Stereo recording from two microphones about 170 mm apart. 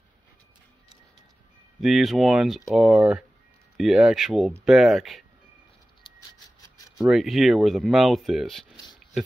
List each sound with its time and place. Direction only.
1.8 s speech: centre (ahead or behind)
7.1 s speech: centre (ahead or behind)